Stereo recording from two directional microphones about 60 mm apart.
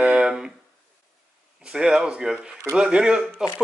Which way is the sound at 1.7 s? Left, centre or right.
Centre.